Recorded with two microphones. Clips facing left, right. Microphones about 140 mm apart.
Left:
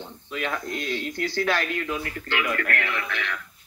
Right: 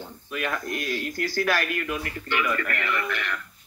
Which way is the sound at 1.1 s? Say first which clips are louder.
Even; 20° left (ahead or behind).